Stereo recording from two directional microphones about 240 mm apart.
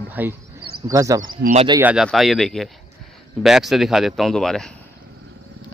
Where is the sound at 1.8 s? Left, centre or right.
Centre.